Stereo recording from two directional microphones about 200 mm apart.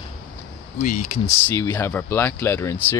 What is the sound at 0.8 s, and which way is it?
Speech, 35° left (ahead or behind).